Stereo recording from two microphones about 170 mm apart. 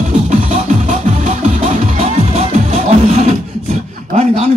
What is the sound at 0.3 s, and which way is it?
Music, 45° right (ahead or behind).